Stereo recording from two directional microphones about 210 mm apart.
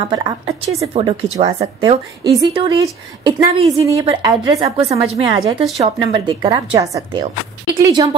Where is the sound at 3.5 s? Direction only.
30° right (ahead or behind).